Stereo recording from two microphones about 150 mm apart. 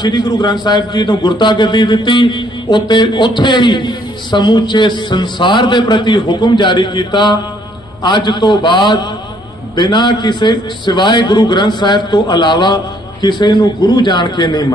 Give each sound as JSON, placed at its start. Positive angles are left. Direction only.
{"t": 0.0, "sound": "a man's voice", "side_deg": 30}